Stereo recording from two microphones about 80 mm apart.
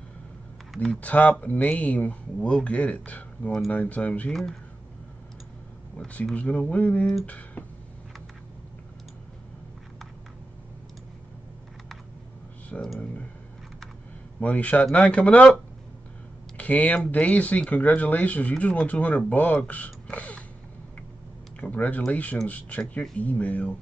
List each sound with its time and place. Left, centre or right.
0.9 s speech: centre
4.3 s speech: centre
6.0 s speech: left
12.7 s speech: centre
14.4 s speech: centre
16.5 s speech: centre
21.5 s speech: centre